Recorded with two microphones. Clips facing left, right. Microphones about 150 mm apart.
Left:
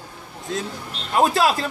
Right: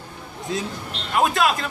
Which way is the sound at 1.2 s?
35° left (ahead or behind).